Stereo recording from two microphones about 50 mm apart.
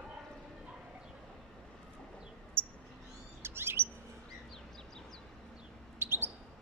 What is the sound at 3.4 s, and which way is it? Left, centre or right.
Chirp, right.